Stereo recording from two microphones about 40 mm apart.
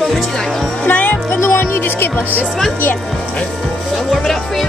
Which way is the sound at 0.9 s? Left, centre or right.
Left.